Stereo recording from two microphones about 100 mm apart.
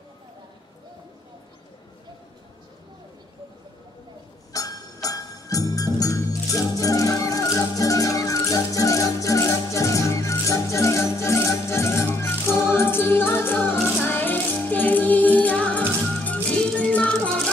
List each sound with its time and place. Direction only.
4.5 s music: 35° left (ahead or behind); by 17.4 s 10° left (ahead or behind)